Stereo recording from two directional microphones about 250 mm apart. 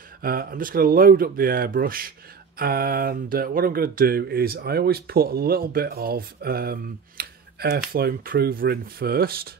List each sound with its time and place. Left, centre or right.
0.2 s speech: right